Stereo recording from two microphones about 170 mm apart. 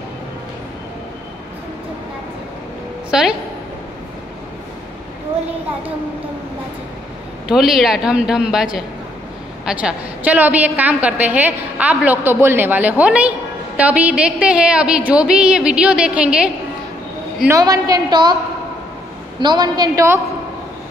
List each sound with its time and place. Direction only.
3.1 s a woman's voice: 5° right (ahead or behind)
7.4 s a woman's voice: centre (ahead or behind)
17.5 s a woman's voice: 20° right (ahead or behind)
19.4 s a woman's voice: 25° right (ahead or behind)